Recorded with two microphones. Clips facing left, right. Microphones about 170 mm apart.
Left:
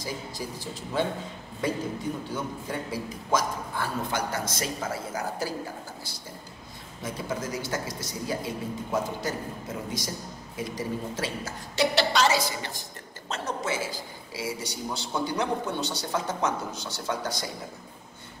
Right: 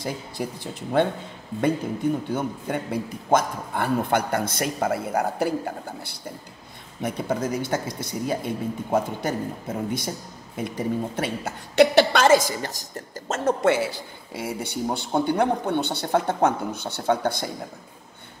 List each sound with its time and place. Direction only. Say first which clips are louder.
0.0 s a man's voice: right 5 dB; 60° right (ahead or behind)
2.3 s a man's voice: right 5 dB; 60° right (ahead or behind)